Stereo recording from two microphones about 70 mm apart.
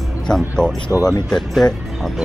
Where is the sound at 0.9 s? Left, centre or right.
Left.